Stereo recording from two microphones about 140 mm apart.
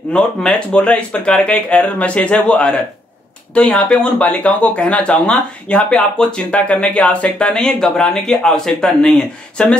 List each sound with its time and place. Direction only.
0.1 s speech: 5° left (ahead or behind)